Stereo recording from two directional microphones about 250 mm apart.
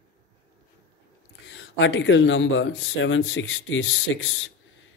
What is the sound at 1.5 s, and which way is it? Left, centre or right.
Speech, left.